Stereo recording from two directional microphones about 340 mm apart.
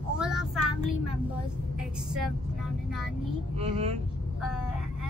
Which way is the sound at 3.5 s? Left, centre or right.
Centre.